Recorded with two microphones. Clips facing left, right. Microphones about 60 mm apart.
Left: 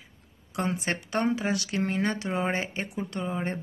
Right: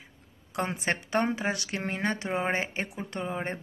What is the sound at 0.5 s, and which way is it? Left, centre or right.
Speech, right.